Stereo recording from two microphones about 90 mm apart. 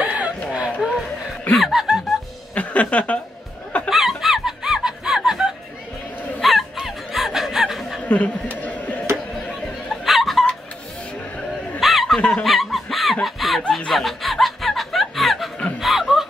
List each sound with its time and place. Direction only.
0.0 s chicken: 15° right (ahead or behind)
0.7 s music: 5° right (ahead or behind)
1.6 s laughter: 5° right (ahead or behind)
2.5 s a sound: 15° left (ahead or behind)
3.9 s snicker: 5° right (ahead or behind)
8.0 s a sound: 15° left (ahead or behind)
9.1 s a sound: 5° left (ahead or behind)
11.8 s snicker: centre (ahead or behind)
12.2 s snicker: 15° left (ahead or behind)
12.4 s snicker: centre (ahead or behind)